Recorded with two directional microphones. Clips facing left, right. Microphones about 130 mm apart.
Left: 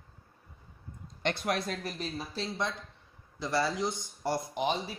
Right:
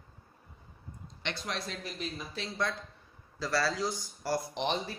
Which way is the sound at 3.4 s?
20° left (ahead or behind).